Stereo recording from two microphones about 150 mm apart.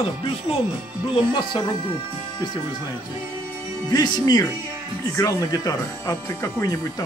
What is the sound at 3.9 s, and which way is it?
Speech, 25° left (ahead or behind).